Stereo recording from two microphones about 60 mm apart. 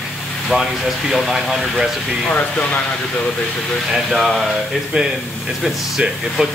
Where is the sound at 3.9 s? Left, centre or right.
Centre.